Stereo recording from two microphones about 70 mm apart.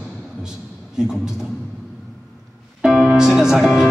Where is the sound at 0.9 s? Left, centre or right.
Centre.